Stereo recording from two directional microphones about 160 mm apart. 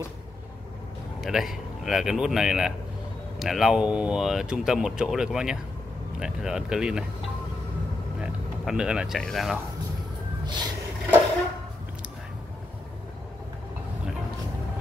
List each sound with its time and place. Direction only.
1.2 s speech: centre (ahead or behind)
8.2 s speech: 5° right (ahead or behind)
10.4 s a sound: 25° right (ahead or behind)